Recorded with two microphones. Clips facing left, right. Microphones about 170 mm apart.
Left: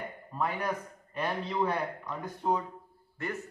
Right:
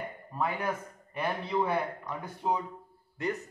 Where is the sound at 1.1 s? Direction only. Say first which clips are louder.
Right 1 dB; 10° right (ahead or behind).